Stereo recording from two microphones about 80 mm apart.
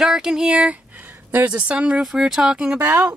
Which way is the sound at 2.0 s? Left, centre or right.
Centre.